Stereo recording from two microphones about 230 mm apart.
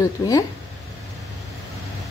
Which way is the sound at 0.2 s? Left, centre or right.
Centre.